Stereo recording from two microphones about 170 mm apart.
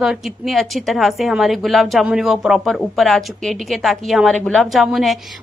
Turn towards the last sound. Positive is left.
turn(degrees=0)  # may be behind; listen again after turning